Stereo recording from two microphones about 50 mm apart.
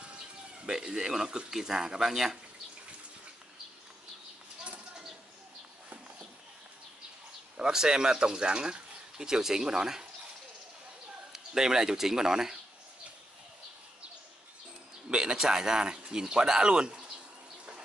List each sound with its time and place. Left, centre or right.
0.7 s speech: centre
7.5 s speech: centre
11.3 s speech: centre
15.0 s speech: centre